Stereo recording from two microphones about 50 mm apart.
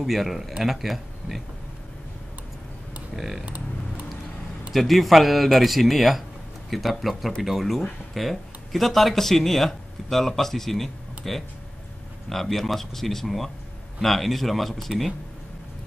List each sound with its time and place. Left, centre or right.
0.0 s speech: centre
3.2 s speech: centre
3.4 s typing: right
4.7 s speech: centre